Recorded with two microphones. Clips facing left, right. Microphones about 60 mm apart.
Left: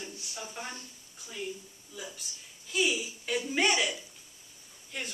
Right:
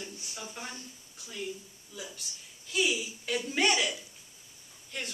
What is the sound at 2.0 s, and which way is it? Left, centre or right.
Speech, centre.